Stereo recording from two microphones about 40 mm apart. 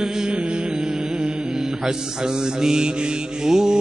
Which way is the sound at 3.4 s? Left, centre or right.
Centre.